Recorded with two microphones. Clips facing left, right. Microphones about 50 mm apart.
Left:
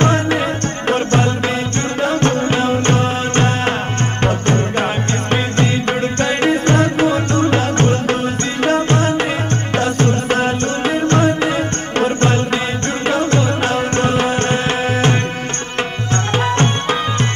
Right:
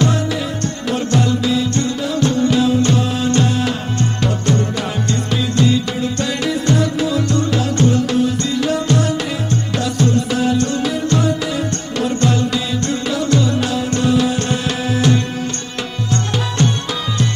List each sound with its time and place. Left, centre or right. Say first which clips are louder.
0.0 s music: left 3 dB; left
16.1 s tabla: left 4 dB; left